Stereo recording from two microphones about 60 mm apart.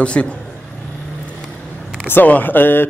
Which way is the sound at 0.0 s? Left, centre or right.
Centre.